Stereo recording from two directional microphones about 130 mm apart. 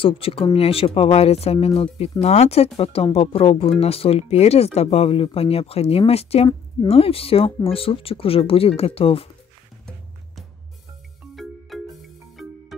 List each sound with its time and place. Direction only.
0.0 s speech: 45° left (ahead or behind)
11.3 s music: centre (ahead or behind)